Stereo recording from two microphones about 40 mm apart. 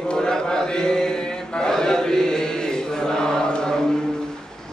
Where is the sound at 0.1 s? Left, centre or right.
Centre.